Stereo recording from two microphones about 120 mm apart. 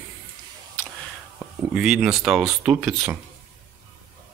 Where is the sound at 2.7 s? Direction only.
20° right (ahead or behind).